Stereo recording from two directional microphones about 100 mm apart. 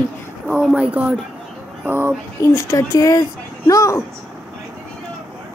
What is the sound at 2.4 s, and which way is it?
Speech, 30° left (ahead or behind).